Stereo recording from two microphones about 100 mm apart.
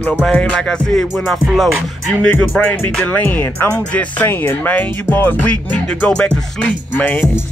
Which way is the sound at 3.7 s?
15° left (ahead or behind).